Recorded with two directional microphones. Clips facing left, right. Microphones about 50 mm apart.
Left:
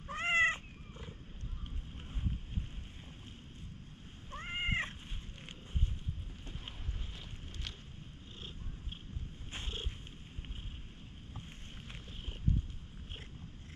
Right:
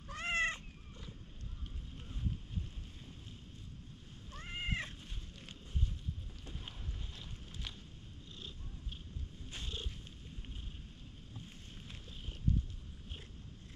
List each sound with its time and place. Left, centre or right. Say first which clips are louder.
0.0 s cat: left 5 dB; left
4.3 s cat: left 4 dB; left
8.4 s purr: left 2 dB; left
9.5 s cat: left 2 dB; left